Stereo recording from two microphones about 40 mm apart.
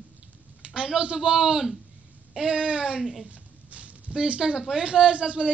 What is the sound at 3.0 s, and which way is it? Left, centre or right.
Speech, centre.